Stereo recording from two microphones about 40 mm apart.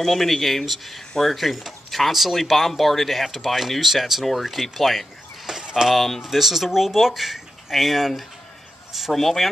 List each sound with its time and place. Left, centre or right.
0.0 s speech: centre
5.6 s a sound: centre
5.9 s speech: centre